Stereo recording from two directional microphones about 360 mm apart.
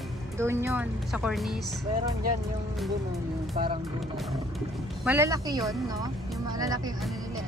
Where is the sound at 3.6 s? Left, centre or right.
Centre.